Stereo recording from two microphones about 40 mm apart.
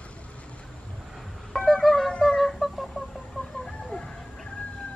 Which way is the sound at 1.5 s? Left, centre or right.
Centre.